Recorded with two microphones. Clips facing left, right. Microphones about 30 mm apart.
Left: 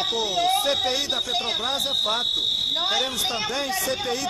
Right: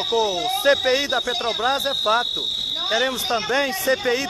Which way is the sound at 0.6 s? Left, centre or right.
Centre.